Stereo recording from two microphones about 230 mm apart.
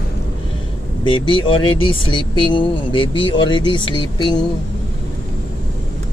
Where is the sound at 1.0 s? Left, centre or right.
Left.